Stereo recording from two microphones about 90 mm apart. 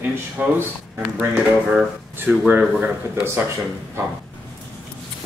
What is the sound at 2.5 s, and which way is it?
Speech, 15° right (ahead or behind).